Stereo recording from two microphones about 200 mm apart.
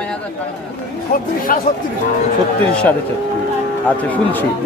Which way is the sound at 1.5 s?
45° left (ahead or behind).